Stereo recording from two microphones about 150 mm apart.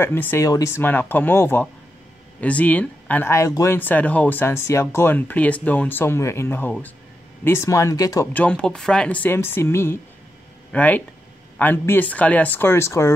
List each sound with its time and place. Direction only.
0.0 s speech: 15° left (ahead or behind)
8.3 s speech: 10° left (ahead or behind)